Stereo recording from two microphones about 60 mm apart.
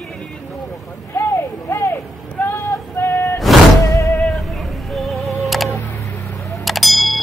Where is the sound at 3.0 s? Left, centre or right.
Left.